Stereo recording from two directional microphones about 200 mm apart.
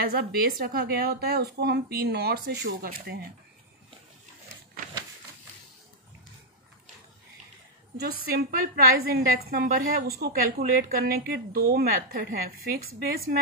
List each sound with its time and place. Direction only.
0.0 s a woman's voice: 50° right (ahead or behind)
8.3 s a woman's voice: 45° right (ahead or behind)